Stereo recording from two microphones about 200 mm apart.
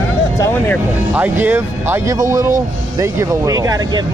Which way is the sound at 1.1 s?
10° right (ahead or behind).